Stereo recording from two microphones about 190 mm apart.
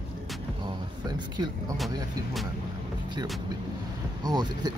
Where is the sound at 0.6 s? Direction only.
20° right (ahead or behind).